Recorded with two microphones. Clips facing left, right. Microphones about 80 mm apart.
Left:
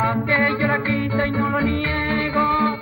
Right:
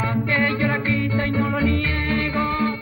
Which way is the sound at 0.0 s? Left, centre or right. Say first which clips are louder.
Left 2 dB; left.